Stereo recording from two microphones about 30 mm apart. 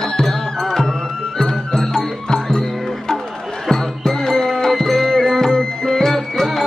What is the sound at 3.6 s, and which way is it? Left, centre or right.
Music, centre.